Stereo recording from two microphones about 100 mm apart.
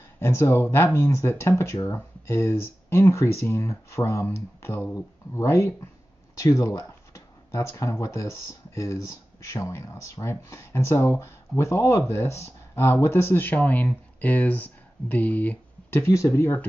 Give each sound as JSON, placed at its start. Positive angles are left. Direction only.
{"t": 0.2, "sound": "speech", "side_deg": 25}